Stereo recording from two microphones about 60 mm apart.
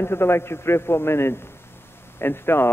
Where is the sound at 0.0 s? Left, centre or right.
Left.